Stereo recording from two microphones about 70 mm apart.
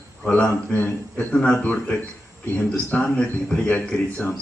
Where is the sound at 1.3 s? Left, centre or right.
Centre.